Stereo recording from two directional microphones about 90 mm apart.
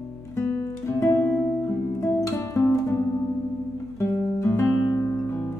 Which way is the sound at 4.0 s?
35° left (ahead or behind).